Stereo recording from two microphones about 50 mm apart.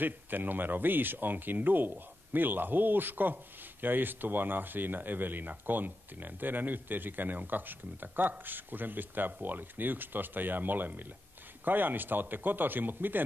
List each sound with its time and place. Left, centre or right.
0.0 s speech: right